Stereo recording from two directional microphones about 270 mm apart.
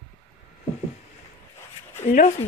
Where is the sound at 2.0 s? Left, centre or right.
Left.